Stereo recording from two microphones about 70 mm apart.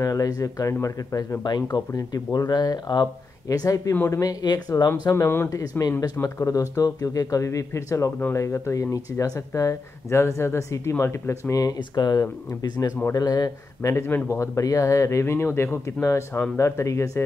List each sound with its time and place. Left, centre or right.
0.0 s speech: left
1.4 s speech: left
1.9 s speech: left
3.4 s speech: left
5.1 s speech: left
5.5 s speech: left
11.9 s speech: left
13.1 s speech: left
13.9 s speech: left